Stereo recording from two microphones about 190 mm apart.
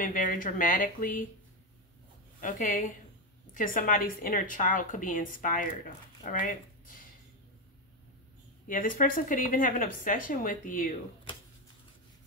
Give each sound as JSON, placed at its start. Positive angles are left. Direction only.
{"t": 0.0, "sound": "speech", "side_deg": 45}
{"t": 2.4, "sound": "speech", "side_deg": 45}
{"t": 8.6, "sound": "speech", "side_deg": 45}